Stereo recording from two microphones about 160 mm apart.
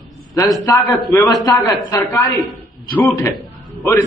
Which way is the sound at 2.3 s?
Centre (ahead or behind).